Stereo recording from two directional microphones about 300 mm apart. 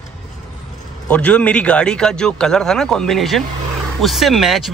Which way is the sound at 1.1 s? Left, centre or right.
Centre.